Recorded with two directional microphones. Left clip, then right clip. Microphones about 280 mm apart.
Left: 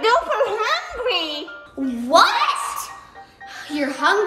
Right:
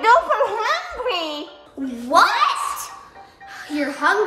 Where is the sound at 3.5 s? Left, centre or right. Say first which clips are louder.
Even; centre.